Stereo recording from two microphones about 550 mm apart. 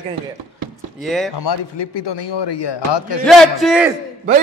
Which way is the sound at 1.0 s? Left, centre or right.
Centre.